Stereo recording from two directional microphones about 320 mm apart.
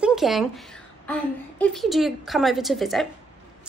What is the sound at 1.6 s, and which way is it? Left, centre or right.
A woman's voice, centre.